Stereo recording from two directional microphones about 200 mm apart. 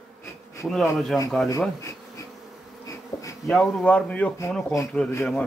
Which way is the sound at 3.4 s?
Centre (ahead or behind).